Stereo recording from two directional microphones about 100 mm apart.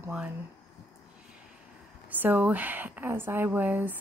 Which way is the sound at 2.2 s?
15° right (ahead or behind).